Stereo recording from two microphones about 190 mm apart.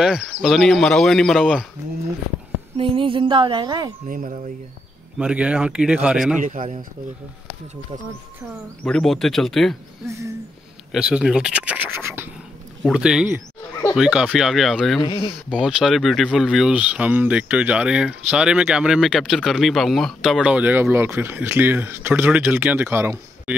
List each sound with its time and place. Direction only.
0.0 s speech: 5° right (ahead or behind)
2.8 s music: 25° right (ahead or behind)
4.1 s speech: 45° right (ahead or behind)
5.2 s speech: 5° right (ahead or behind)
6.4 s speech: 45° right (ahead or behind)
8.8 s speech: 5° left (ahead or behind)
10.0 s speech: 15° right (ahead or behind)
10.9 s speech: 5° right (ahead or behind)
15.0 s speech: 25° left (ahead or behind)
15.6 s speech: centre (ahead or behind)